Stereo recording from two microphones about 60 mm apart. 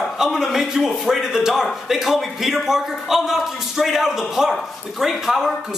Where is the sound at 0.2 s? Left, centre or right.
Centre.